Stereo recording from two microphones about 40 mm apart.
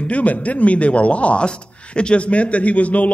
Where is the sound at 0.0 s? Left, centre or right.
Left.